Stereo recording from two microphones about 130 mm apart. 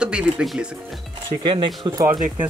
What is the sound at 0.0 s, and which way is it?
Speech, 5° right (ahead or behind).